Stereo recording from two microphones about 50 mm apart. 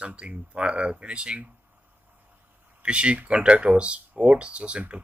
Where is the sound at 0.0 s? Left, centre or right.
Right.